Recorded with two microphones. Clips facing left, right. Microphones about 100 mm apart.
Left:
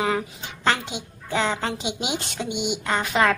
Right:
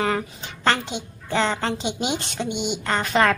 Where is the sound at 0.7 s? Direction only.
5° left (ahead or behind).